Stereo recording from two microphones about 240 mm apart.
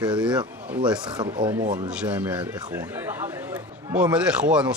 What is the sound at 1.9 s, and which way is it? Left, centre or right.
Speech, centre.